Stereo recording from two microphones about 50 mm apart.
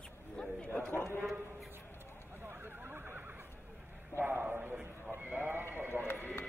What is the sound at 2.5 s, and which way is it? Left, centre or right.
Neigh, right.